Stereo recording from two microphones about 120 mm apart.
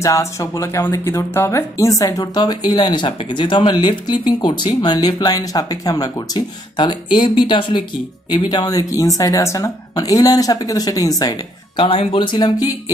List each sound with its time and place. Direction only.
0.0 s speech: 25° left (ahead or behind)
11.7 s speech: 45° left (ahead or behind)